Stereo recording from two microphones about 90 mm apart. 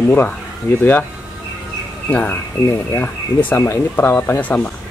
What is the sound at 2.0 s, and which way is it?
Speech, 15° left (ahead or behind).